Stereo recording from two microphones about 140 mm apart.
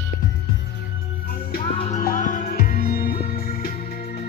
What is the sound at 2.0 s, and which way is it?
Music, 70° left (ahead or behind).